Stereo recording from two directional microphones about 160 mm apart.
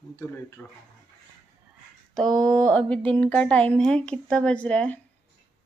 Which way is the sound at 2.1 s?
5° left (ahead or behind).